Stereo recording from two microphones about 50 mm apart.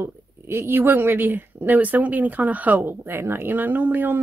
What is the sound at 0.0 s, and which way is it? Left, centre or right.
Speech, right.